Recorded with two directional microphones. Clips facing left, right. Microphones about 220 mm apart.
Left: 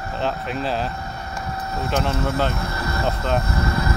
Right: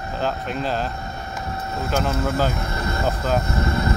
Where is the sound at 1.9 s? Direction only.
Centre (ahead or behind).